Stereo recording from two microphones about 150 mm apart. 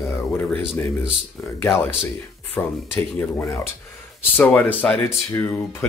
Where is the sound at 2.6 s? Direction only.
15° left (ahead or behind).